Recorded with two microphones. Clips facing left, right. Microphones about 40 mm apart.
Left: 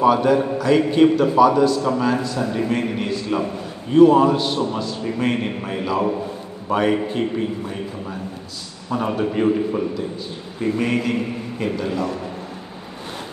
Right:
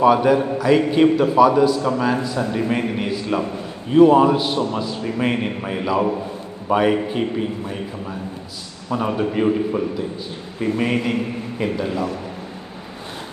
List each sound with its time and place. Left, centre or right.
0.0 s a man's voice: centre
10.6 s a man's voice: centre